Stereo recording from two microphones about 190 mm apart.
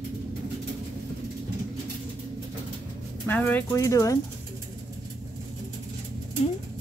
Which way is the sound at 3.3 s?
10° left (ahead or behind).